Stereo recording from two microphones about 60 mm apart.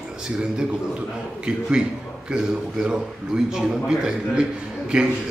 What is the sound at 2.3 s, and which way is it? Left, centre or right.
A man's voice, centre.